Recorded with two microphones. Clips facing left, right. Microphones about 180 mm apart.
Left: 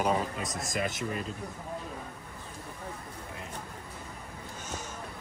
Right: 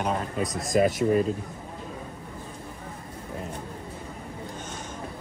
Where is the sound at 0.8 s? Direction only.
40° right (ahead or behind).